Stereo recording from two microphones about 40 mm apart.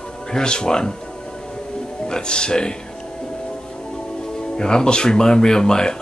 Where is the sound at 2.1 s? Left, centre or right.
Left.